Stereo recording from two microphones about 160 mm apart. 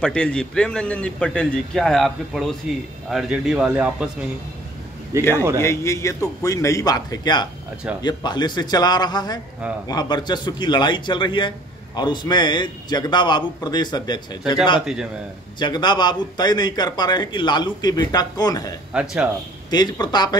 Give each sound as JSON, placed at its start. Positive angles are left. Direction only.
{"t": 0.0, "sound": "speech", "side_deg": 5}
{"t": 5.3, "sound": "speech", "side_deg": -20}
{"t": 5.6, "sound": "a man's voice", "side_deg": 15}
{"t": 18.9, "sound": "speech", "side_deg": -10}
{"t": 19.7, "sound": "a man's voice", "side_deg": 25}